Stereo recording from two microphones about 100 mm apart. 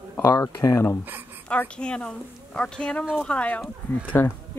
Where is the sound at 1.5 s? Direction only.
10° left (ahead or behind).